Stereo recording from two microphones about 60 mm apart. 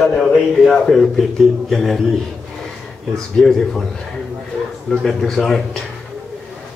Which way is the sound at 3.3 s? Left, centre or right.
Centre.